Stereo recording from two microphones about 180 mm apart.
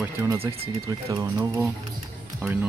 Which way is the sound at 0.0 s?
15° right (ahead or behind).